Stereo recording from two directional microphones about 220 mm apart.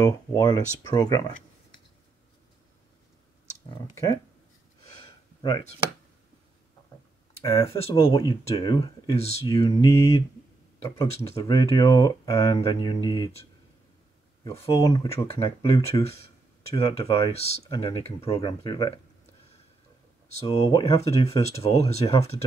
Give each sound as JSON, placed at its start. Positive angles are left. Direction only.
{"t": 0.0, "sound": "speech", "side_deg": 15}
{"t": 3.9, "sound": "speech", "side_deg": 15}
{"t": 5.4, "sound": "speech", "side_deg": 20}
{"t": 7.4, "sound": "speech", "side_deg": 20}
{"t": 11.3, "sound": "speech", "side_deg": 15}
{"t": 14.5, "sound": "speech", "side_deg": 25}
{"t": 20.4, "sound": "speech", "side_deg": 20}